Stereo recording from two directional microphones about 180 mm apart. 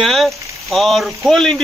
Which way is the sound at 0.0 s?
Centre (ahead or behind).